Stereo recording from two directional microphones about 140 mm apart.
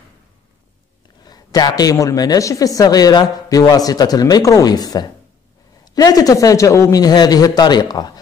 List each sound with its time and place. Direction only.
1.2 s a woman's voice: 30° left (ahead or behind)